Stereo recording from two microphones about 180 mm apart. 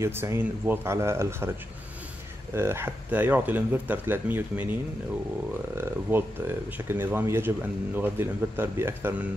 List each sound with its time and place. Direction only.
0.0 s speech: 15° right (ahead or behind)
2.5 s speech: 15° right (ahead or behind)
5.8 s speech: 10° right (ahead or behind)